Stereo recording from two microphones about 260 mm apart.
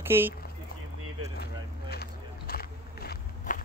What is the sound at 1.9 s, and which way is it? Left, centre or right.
Walk, left.